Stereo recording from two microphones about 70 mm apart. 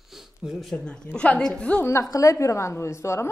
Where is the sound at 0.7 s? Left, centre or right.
Centre.